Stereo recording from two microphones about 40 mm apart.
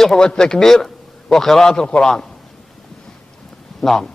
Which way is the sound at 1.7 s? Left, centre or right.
Left.